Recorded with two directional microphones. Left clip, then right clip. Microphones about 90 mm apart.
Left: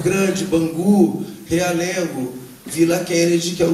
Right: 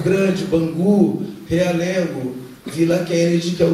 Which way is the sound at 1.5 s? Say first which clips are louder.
Right 1 dB; 35° left (ahead or behind).